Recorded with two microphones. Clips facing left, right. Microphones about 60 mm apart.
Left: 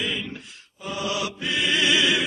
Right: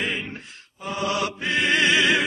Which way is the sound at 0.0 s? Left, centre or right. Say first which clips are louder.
Right 1 dB; right.